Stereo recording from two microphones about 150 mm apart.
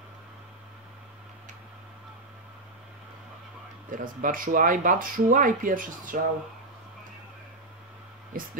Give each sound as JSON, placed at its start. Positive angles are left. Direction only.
{"t": 3.9, "sound": "speech", "side_deg": -65}